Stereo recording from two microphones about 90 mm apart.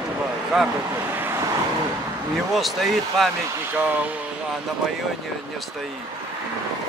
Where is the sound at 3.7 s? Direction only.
20° right (ahead or behind).